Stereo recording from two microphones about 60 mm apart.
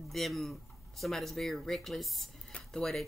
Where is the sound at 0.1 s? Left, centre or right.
Centre.